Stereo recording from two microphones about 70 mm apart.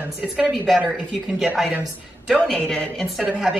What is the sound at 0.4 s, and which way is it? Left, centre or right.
Speech, centre.